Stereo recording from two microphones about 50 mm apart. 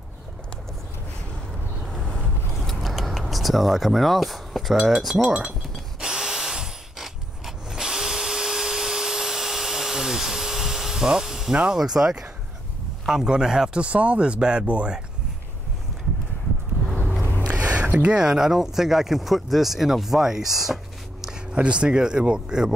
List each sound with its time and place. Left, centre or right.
2.0 s boat: centre
2.6 s speech: centre
5.9 s drill: centre
11.5 s speech: centre
11.8 s speech: centre; by 15.0 s right
17.2 s a sound: left
17.5 s a sound: right
17.9 s speech: centre
21.5 s speech: centre